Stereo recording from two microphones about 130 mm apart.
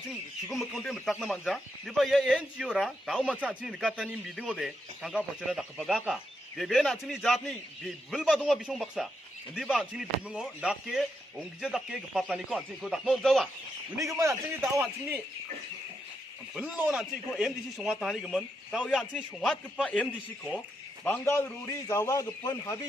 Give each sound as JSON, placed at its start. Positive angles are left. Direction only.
{"t": 0.5, "sound": "a man's voice", "side_deg": 0}
{"t": 13.9, "sound": "a man's voice", "side_deg": -25}
{"t": 16.5, "sound": "a man's voice", "side_deg": -10}